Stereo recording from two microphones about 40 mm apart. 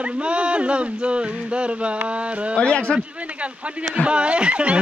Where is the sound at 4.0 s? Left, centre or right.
Right.